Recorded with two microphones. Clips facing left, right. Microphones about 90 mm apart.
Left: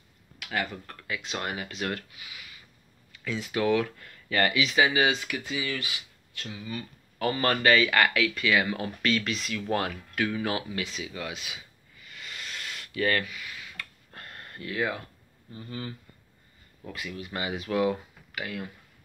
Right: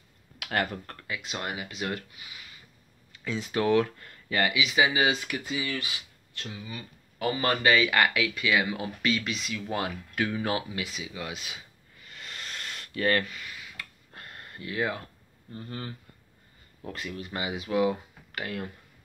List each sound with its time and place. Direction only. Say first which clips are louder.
0.5 s speech: right 2 dB; 55° right (ahead or behind)
1.3 s speech: left 1 dB; 15° right (ahead or behind)
4.4 s speech: left 1 dB; 5° right (ahead or behind)
4.8 s speech: left 1 dB; 20° right (ahead or behind)
10.8 s speech: left 1 dB; 10° right (ahead or behind)
11.2 s speech: left 1 dB; 25° right (ahead or behind)
12.1 s a sound: even; 35° right (ahead or behind)
16.9 s speech: even; 35° right (ahead or behind)
17.4 s speech: right 1 dB; 15° right (ahead or behind)
18.3 s speech: right 1 dB; 35° right (ahead or behind)